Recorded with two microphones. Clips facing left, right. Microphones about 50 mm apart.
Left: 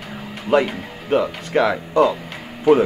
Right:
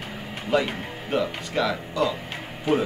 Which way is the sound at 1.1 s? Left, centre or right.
Left.